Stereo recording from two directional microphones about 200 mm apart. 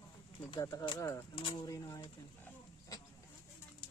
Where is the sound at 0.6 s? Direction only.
15° left (ahead or behind).